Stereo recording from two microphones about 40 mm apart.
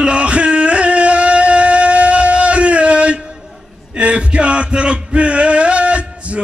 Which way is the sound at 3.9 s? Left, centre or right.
Right.